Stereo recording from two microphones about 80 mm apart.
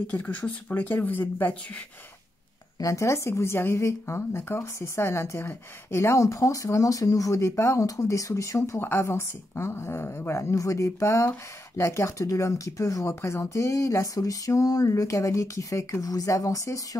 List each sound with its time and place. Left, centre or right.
0.1 s speech: centre
2.8 s a woman's voice: left